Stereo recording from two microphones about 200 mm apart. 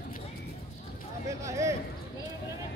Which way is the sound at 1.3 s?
15° right (ahead or behind).